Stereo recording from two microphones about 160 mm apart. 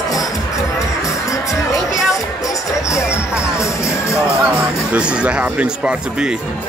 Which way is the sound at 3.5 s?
20° left (ahead or behind).